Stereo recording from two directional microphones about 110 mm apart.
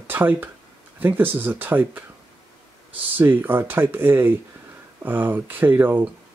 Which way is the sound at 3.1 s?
15° right (ahead or behind).